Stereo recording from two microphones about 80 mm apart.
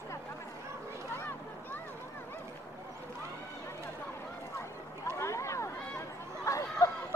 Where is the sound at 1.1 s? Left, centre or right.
Left.